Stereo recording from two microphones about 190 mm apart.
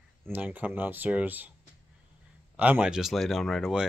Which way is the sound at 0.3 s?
10° right (ahead or behind).